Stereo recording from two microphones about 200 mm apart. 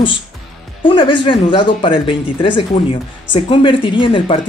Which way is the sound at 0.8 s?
25° left (ahead or behind).